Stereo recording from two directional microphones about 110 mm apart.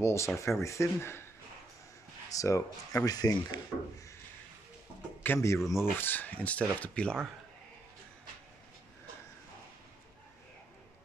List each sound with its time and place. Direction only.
0.0 s speech: 25° left (ahead or behind)
2.2 s speech: 30° left (ahead or behind)
5.2 s a man's voice: 20° left (ahead or behind)